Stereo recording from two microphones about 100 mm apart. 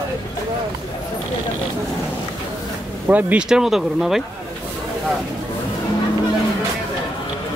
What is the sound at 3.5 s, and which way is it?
Speech, 5° right (ahead or behind).